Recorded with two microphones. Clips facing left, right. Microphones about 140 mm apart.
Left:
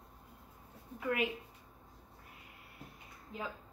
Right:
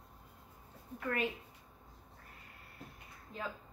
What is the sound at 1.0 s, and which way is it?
Speech, 15° left (ahead or behind).